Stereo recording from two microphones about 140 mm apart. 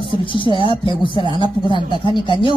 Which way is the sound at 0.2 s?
35° left (ahead or behind).